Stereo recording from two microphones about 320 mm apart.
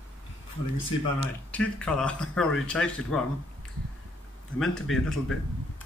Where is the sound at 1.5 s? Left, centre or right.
Centre.